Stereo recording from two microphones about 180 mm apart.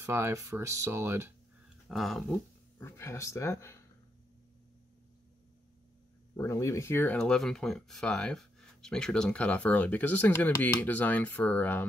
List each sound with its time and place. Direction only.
0.0 s speech: 15° right (ahead or behind)
1.9 s speech: centre (ahead or behind)
2.8 s speech: 15° left (ahead or behind)
6.3 s speech: 15° left (ahead or behind)